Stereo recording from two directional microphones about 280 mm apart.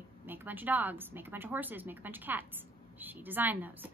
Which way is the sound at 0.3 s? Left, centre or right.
Centre.